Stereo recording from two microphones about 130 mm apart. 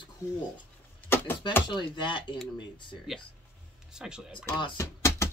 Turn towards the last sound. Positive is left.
turn(degrees=20)  # may be behind; listen again after turning